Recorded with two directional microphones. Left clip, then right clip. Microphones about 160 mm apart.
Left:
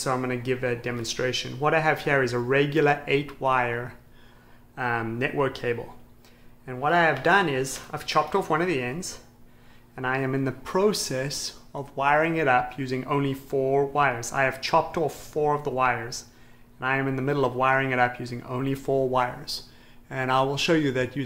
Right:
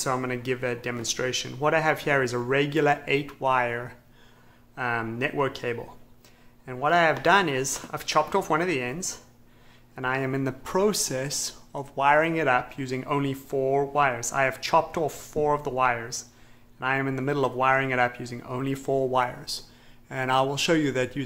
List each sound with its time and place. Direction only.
0.0 s speech: 25° right (ahead or behind)